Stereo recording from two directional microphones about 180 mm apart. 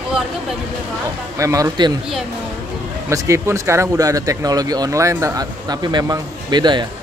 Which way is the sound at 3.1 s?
15° right (ahead or behind).